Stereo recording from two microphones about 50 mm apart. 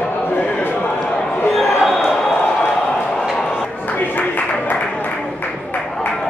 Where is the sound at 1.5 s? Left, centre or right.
Centre.